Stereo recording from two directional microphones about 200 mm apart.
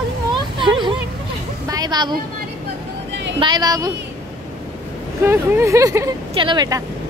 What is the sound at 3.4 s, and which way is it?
Speech, 20° right (ahead or behind).